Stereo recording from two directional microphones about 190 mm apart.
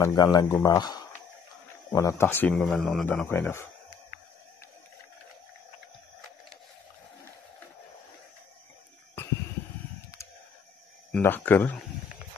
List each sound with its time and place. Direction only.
0.0 s speech: 20° left (ahead or behind)
10.1 s a sound: 15° left (ahead or behind)
11.1 s speech: 10° left (ahead or behind)